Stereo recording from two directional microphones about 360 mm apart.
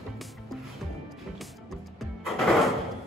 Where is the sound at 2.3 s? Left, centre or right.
Centre.